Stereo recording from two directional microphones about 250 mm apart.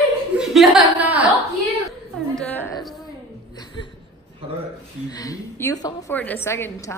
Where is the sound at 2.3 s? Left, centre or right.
Centre.